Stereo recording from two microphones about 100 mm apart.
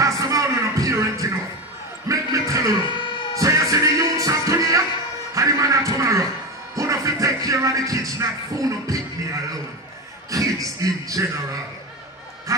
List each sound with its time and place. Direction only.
0.0 s music: 35° right (ahead or behind)
2.0 s a sound: 35° right (ahead or behind)
2.8 s music: 50° left (ahead or behind)
3.3 s music: 35° right (ahead or behind)
6.7 s speech: 35° right (ahead or behind)
10.3 s speech: 35° right (ahead or behind)
12.5 s quack: 35° right (ahead or behind)